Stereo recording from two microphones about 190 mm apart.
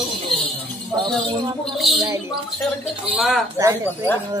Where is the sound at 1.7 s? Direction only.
Centre (ahead or behind).